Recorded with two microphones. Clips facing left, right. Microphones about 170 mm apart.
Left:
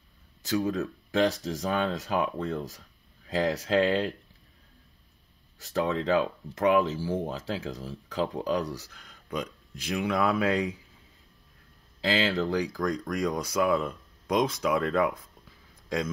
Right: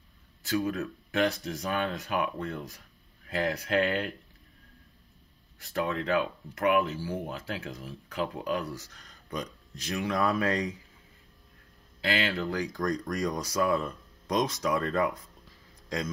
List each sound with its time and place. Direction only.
0.5 s speech: 20° left (ahead or behind)
5.6 s speech: 25° left (ahead or behind)
8.9 s speech: 5° left (ahead or behind)
12.0 s speech: 25° left (ahead or behind)
12.7 s speech: centre (ahead or behind)